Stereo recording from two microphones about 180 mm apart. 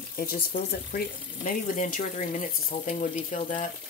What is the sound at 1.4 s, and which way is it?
Speech, 45° left (ahead or behind).